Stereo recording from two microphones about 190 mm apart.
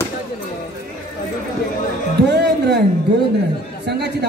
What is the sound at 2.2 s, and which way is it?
Speech, 60° right (ahead or behind).